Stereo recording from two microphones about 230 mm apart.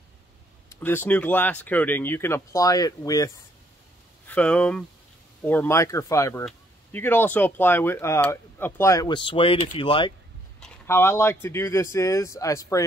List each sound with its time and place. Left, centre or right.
0.7 s speech: centre
4.3 s speech: centre; by 10.1 s left
10.6 s speech: centre